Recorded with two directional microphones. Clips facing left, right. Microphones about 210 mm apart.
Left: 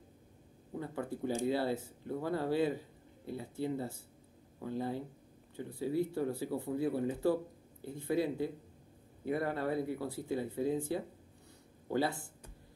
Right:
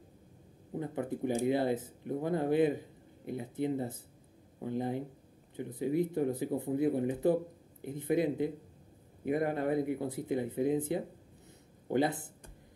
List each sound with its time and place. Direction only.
0.7 s speech: 20° right (ahead or behind)